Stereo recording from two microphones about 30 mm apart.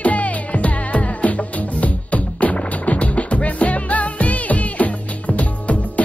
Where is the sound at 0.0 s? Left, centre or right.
Left.